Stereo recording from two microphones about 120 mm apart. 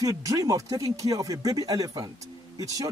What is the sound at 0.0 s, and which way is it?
Speech, 30° right (ahead or behind).